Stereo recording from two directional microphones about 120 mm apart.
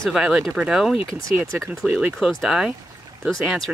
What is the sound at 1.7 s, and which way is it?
Speech, centre (ahead or behind).